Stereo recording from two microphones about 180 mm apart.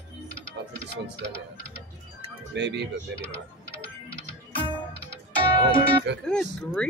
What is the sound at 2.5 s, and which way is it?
Speech, 75° right (ahead or behind).